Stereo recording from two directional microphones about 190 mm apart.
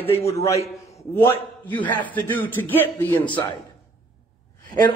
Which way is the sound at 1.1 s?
10° left (ahead or behind).